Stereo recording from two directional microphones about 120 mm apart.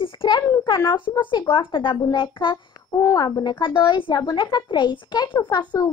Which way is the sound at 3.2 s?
35° left (ahead or behind).